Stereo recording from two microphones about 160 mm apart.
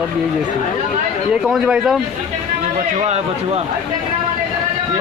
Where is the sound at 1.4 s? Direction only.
5° right (ahead or behind).